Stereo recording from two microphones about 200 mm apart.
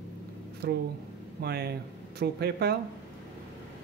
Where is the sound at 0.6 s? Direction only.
55° right (ahead or behind).